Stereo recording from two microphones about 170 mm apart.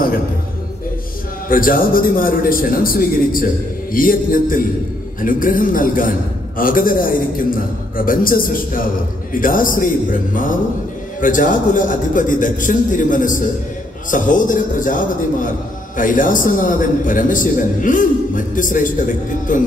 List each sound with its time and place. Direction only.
1.5 s a man's voice: 55° left (ahead or behind)